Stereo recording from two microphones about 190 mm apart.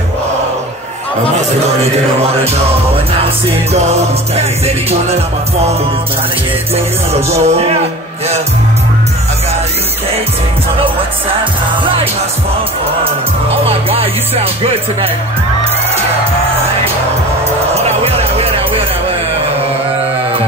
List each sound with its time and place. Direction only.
3.7 s music: 35° right (ahead or behind)
7.4 s music: 35° right (ahead or behind)
11.8 s music: 30° right (ahead or behind)
13.7 s music: 30° right (ahead or behind)